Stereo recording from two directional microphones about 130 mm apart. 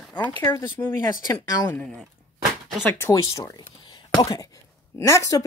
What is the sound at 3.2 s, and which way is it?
Speech, 30° left (ahead or behind).